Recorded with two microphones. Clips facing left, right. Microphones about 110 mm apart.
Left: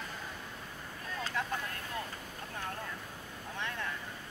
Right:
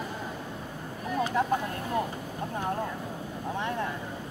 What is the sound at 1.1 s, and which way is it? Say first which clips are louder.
Vehicle: right 10 dB; 20° right (ahead or behind).